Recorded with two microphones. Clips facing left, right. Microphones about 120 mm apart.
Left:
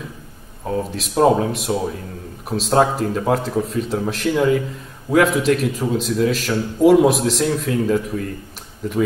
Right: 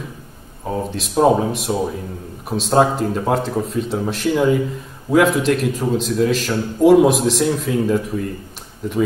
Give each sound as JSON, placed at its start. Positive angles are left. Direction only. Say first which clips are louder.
{"t": 0.7, "sound": "a man's voice", "louder": "even", "side_deg": 0}